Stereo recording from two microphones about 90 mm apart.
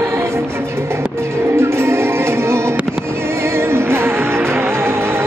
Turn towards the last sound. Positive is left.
turn(degrees=-25)  # may be behind; listen again after turning